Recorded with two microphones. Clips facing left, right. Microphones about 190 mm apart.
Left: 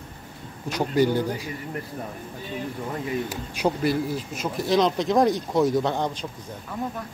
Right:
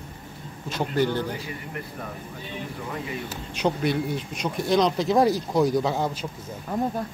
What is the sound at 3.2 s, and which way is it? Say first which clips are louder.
Speech: left 1 dB; 10° left (ahead or behind).